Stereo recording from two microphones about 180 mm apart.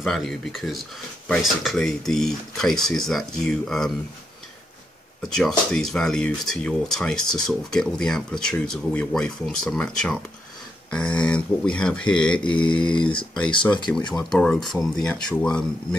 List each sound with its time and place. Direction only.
0.0 s speech: centre (ahead or behind)
5.2 s speech: 5° left (ahead or behind)
12.5 s mantra: 25° left (ahead or behind)
13.8 s speech: 5° left (ahead or behind)